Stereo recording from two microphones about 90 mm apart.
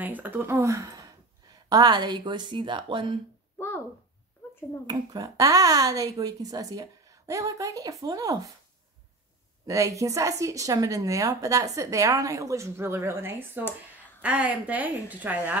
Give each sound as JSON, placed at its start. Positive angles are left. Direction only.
{"t": 0.0, "sound": "speech", "side_deg": -20}
{"t": 1.7, "sound": "a woman's voice", "side_deg": -50}
{"t": 3.5, "sound": "a sound", "side_deg": 25}
{"t": 4.8, "sound": "speech", "side_deg": -45}
{"t": 9.7, "sound": "a woman's voice", "side_deg": -35}